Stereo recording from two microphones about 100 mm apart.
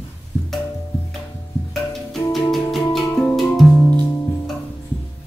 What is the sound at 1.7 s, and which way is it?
Music, 5° left (ahead or behind).